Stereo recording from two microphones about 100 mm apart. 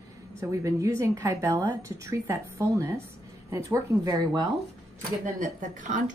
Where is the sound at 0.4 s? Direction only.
35° right (ahead or behind).